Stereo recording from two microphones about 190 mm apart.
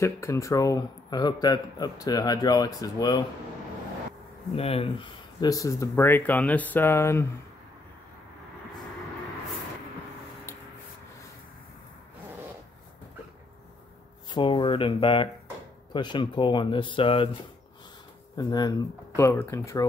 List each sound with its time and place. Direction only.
0.0 s speech: 15° left (ahead or behind)
4.6 s speech: 30° left (ahead or behind); by 7.2 s 15° left (ahead or behind)
14.3 s speech: 25° left (ahead or behind)
18.3 s speech: 20° left (ahead or behind)